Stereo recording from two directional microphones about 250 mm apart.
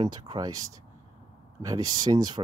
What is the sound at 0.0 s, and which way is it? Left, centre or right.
Speech, centre.